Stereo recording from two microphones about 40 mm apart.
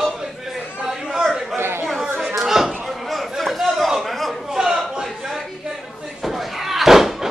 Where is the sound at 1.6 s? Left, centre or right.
Right.